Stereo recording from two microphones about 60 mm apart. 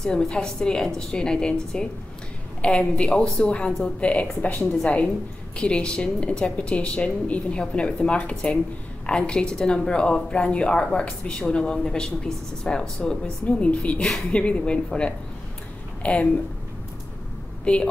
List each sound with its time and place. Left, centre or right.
0.0 s speech: centre
4.0 s a woman's voice: left